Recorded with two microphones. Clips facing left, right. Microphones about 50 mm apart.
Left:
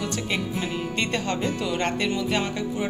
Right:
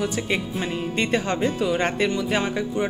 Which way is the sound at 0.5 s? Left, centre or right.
Right.